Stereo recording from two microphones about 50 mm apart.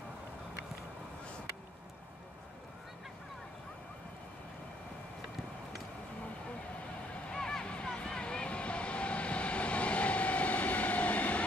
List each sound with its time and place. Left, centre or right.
7.2 s vehicle: centre